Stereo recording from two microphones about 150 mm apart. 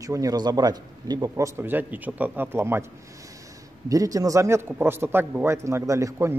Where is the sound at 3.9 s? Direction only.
25° right (ahead or behind).